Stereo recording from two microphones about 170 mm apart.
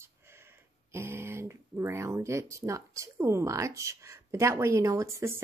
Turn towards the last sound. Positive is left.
turn(degrees=-20)  # may be behind; listen again after turning